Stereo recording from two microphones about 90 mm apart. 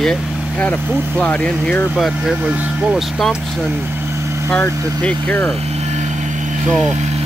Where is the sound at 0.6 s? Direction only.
15° left (ahead or behind).